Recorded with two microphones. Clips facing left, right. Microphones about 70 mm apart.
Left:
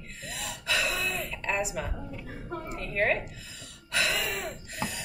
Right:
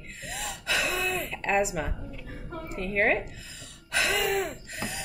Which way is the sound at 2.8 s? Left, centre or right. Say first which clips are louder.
Right 3 dB; right.